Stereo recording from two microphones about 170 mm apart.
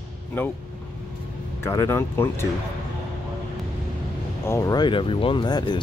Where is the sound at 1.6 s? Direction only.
15° left (ahead or behind).